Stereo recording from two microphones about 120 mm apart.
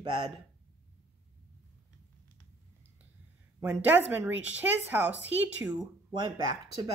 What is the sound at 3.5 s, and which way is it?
Speech, 15° right (ahead or behind).